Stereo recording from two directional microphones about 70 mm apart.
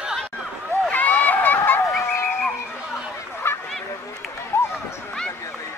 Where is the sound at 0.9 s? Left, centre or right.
Left.